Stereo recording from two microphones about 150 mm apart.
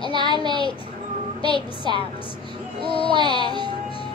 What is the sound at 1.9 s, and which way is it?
Child singing, 30° right (ahead or behind).